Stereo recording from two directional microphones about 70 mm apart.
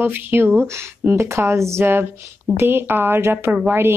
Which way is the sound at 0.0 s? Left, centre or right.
Right.